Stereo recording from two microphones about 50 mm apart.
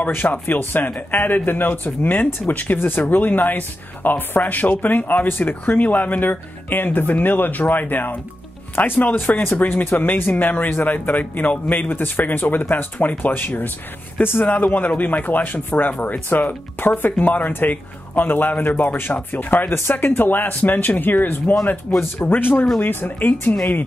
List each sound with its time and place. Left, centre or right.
0.5 s speech: left
21.9 s speech: left
22.2 s speech: left